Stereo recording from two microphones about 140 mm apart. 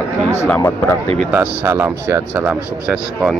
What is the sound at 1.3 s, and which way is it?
Speech, 15° right (ahead or behind).